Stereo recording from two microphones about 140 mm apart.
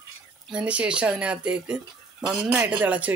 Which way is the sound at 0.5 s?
10° right (ahead or behind).